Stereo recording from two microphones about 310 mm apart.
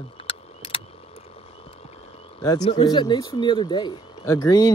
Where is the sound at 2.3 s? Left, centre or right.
Centre.